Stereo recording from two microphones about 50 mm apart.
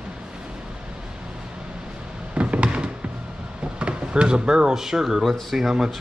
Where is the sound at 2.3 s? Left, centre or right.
Right.